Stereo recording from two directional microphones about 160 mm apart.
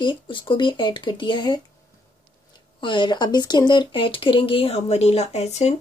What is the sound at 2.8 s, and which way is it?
Speech, 30° left (ahead or behind).